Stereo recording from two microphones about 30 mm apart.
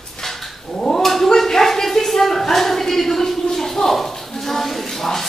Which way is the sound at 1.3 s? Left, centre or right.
Centre.